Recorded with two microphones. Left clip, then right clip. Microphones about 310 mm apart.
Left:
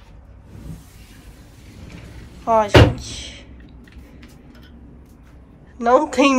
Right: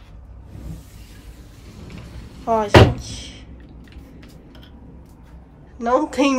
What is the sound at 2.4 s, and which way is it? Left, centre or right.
Speech, centre.